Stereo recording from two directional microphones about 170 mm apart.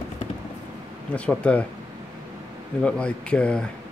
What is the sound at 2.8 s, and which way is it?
Speech, 5° left (ahead or behind).